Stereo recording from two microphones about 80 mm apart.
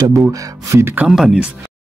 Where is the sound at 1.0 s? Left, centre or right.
Centre.